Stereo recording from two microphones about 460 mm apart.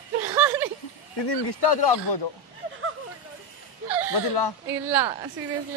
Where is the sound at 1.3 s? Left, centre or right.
Left.